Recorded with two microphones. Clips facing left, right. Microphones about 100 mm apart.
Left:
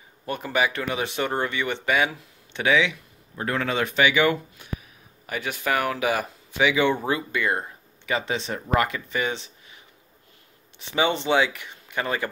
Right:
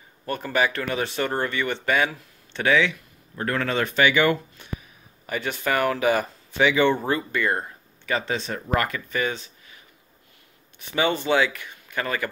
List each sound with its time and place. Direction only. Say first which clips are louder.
0.2 s speech: right 1 dB; 10° left (ahead or behind)
10.8 s speech: even; 20° left (ahead or behind)